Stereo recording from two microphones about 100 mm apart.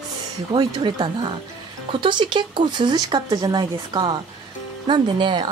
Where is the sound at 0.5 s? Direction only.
45° right (ahead or behind).